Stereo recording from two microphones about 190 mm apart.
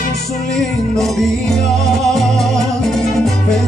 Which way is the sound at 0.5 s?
Centre (ahead or behind).